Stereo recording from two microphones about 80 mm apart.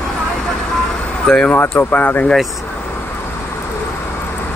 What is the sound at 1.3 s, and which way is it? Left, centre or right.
Speech, centre.